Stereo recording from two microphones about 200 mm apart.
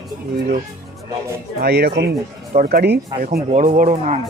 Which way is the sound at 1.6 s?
55° right (ahead or behind).